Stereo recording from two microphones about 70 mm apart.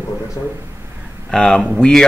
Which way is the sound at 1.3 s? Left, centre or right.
Centre.